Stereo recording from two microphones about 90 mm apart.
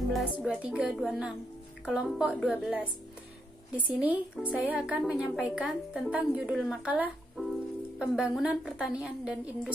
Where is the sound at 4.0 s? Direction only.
15° right (ahead or behind).